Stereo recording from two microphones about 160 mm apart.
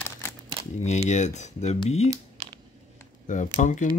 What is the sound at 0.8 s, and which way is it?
Speech, 45° left (ahead or behind).